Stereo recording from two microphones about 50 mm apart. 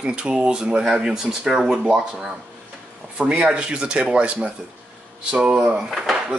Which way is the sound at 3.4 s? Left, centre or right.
Centre.